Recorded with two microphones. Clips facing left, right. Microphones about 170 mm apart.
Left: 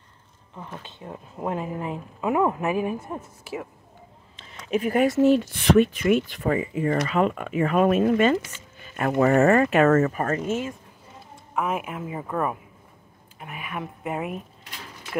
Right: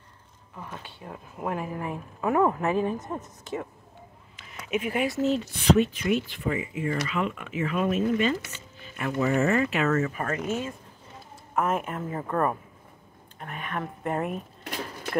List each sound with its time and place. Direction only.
0.7 s a woman's voice: 20° left (ahead or behind)
4.6 s speech: 40° left (ahead or behind)
11.5 s a woman's voice: centre (ahead or behind)
14.6 s a sound: 55° right (ahead or behind)